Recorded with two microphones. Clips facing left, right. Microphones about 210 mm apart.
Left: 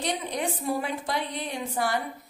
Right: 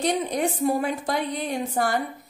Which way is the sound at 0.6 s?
45° right (ahead or behind).